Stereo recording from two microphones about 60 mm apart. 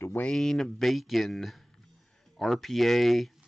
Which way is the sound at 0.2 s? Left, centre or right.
Centre.